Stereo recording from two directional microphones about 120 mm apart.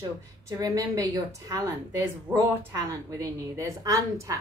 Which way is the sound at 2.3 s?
10° left (ahead or behind).